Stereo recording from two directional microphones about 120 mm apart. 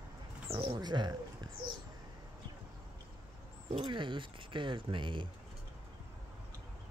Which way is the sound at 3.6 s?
45° right (ahead or behind).